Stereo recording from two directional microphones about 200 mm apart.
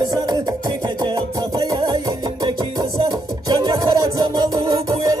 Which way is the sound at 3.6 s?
20° right (ahead or behind).